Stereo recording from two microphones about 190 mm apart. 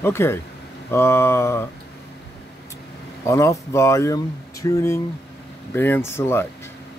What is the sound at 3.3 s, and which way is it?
Speech, 15° left (ahead or behind).